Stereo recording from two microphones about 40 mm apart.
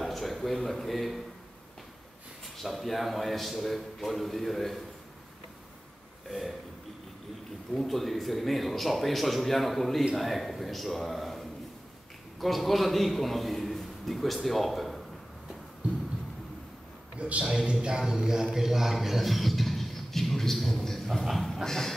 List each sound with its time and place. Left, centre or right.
0.0 s speech: centre
2.5 s a man's voice: centre
6.2 s speech: centre
7.7 s a man's voice: centre
17.2 s a man's voice: right
17.8 s speech: centre
21.6 s music: centre